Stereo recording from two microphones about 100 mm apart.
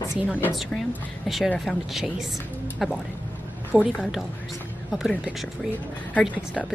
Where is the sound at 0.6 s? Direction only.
Centre (ahead or behind).